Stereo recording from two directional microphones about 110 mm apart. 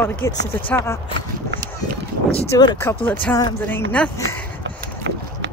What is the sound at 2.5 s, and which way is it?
Speech, 35° left (ahead or behind).